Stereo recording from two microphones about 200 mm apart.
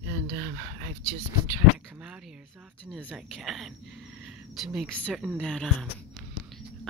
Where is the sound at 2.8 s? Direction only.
Centre (ahead or behind).